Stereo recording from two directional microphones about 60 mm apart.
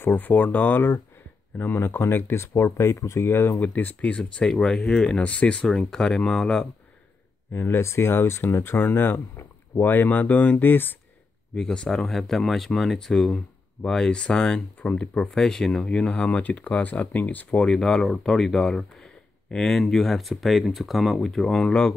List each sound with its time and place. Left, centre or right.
0.0 s speech: left
3.6 s speech: left
4.1 s speech: centre
5.7 s speech: centre
6.4 s speech: centre
7.6 s speech: left
11.5 s speech: centre
17.6 s speech: centre